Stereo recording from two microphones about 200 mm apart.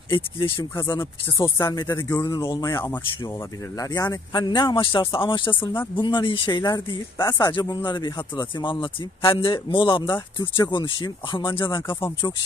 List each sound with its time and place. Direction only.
0.1 s speech: 20° left (ahead or behind)